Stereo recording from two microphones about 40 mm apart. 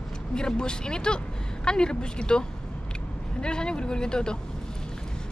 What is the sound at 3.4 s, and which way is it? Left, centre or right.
Speech, left.